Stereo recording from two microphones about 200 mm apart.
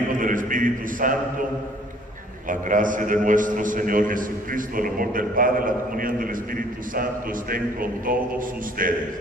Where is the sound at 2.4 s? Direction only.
40° right (ahead or behind).